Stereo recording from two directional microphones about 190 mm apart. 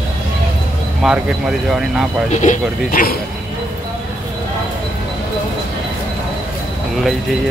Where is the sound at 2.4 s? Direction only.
45° left (ahead or behind).